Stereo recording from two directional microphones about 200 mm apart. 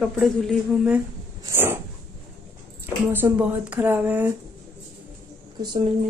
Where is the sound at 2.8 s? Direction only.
10° right (ahead or behind).